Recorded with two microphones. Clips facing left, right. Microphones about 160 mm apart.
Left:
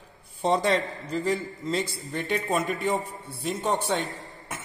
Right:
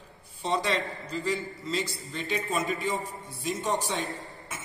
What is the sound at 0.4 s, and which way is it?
A man's voice, 50° left (ahead or behind).